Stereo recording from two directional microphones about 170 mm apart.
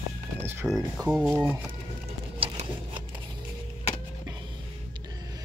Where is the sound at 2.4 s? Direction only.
30° right (ahead or behind).